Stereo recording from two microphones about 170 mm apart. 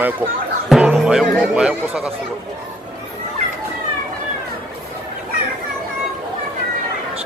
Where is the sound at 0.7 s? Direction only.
Centre (ahead or behind).